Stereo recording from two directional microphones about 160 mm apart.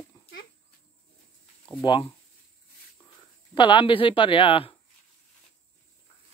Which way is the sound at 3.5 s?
30° left (ahead or behind).